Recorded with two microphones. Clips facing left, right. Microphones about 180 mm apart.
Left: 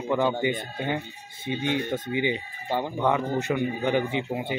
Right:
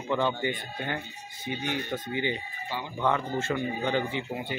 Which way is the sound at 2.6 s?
50° left (ahead or behind).